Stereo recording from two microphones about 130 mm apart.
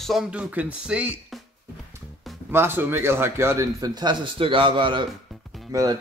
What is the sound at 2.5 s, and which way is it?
Speech, 15° right (ahead or behind).